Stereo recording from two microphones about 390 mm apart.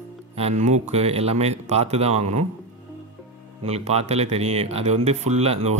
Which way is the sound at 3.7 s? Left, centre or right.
Centre.